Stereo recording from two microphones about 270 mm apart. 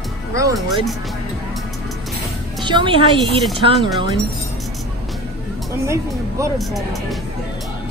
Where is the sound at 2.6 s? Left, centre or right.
Centre.